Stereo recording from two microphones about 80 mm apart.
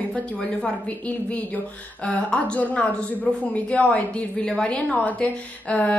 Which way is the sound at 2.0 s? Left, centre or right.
Centre.